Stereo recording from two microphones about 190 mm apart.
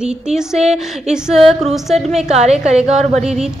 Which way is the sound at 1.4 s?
30° right (ahead or behind).